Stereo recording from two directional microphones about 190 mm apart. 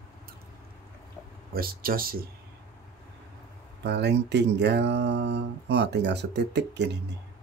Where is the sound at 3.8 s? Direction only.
60° right (ahead or behind).